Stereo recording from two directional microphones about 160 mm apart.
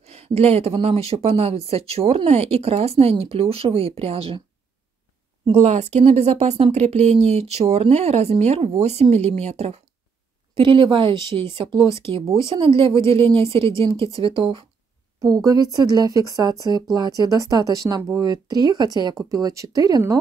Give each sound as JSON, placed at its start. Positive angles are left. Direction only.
{"t": 0.0, "sound": "speech", "side_deg": -40}
{"t": 5.5, "sound": "a woman's voice", "side_deg": -45}
{"t": 10.5, "sound": "speech", "side_deg": -30}